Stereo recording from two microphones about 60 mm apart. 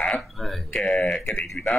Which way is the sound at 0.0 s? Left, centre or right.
Centre.